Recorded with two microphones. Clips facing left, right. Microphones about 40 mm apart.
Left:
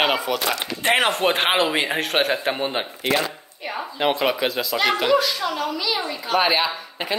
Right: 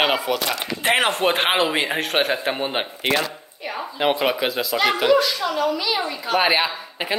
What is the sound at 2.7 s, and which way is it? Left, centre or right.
Speech, right.